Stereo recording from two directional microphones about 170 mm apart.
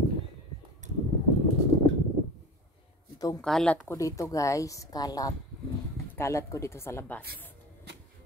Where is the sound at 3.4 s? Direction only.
5° left (ahead or behind).